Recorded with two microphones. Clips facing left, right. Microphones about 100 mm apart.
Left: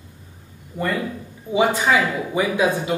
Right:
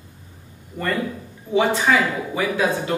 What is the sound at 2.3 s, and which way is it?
Speech, 15° left (ahead or behind).